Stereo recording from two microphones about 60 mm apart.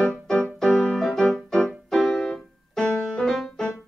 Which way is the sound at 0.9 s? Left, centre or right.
Centre.